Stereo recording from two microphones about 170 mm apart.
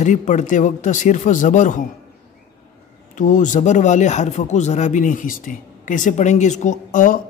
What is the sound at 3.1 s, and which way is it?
Speech, 50° left (ahead or behind).